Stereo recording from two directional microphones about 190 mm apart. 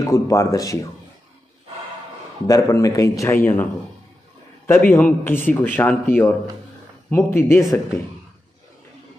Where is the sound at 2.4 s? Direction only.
20° left (ahead or behind).